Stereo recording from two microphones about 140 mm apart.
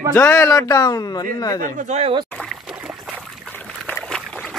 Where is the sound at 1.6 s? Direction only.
65° right (ahead or behind).